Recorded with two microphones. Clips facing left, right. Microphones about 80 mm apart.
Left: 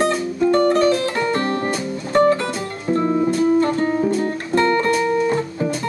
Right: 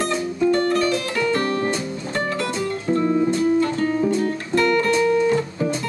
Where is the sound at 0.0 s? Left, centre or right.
Left.